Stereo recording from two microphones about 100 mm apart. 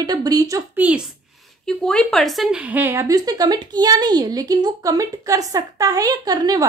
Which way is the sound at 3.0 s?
40° right (ahead or behind).